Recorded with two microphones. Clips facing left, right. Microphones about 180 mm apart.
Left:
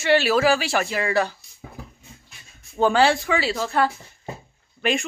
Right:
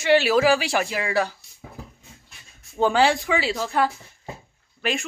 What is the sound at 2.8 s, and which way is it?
Speech, 15° right (ahead or behind).